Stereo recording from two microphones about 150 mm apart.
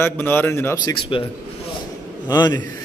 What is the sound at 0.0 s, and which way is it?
Speech, 15° left (ahead or behind).